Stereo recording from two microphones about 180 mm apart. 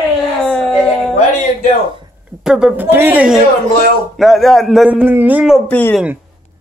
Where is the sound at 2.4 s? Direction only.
5° right (ahead or behind).